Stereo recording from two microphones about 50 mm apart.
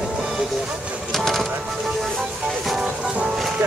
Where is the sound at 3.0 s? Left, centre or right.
Centre.